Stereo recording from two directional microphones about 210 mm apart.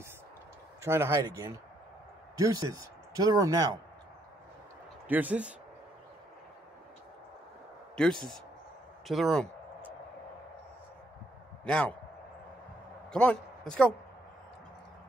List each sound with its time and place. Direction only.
0.8 s speech: 10° right (ahead or behind)
5.0 s speech: 10° right (ahead or behind)
7.9 s speech: 5° left (ahead or behind)
11.6 s a man's voice: 5° left (ahead or behind)
13.1 s a man's voice: 5° left (ahead or behind)